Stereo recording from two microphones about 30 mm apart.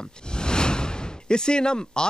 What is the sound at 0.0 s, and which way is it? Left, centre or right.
Speech, left.